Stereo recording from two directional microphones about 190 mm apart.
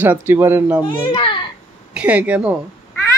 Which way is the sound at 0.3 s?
10° right (ahead or behind).